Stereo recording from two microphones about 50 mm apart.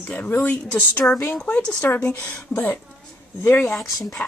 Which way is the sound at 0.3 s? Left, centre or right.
Left.